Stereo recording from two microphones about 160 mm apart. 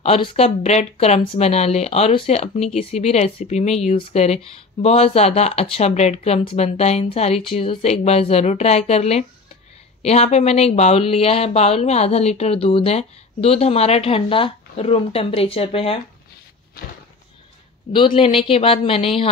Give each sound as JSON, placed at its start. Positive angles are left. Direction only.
{"t": 0.0, "sound": "speech", "side_deg": 35}
{"t": 17.9, "sound": "speech", "side_deg": 35}